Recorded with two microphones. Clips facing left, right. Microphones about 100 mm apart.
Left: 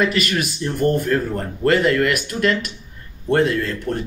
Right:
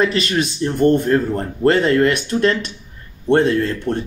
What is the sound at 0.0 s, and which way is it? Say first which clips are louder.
Speech: right 2 dB; 30° right (ahead or behind).